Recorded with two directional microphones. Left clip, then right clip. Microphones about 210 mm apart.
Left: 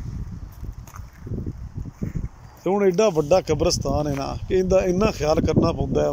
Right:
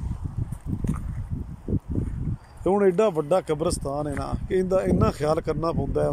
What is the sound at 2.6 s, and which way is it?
Speech, 5° right (ahead or behind).